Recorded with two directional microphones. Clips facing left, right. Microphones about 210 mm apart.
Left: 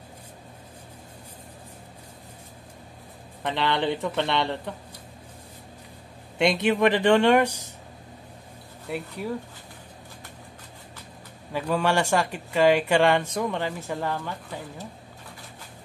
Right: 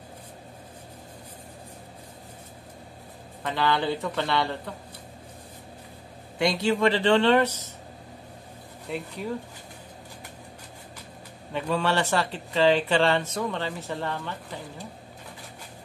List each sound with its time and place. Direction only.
3.4 s speech: 25° left (ahead or behind)
6.3 s speech: 20° left (ahead or behind)
8.9 s speech: 5° left (ahead or behind)
11.5 s speech: 10° left (ahead or behind)